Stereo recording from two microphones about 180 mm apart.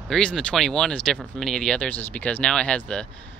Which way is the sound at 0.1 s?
5° left (ahead or behind).